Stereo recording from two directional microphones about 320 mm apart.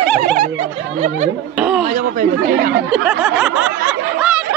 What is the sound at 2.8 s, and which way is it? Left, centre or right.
Snicker, centre.